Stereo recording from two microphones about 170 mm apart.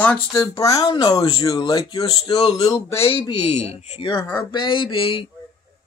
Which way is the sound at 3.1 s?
30° left (ahead or behind).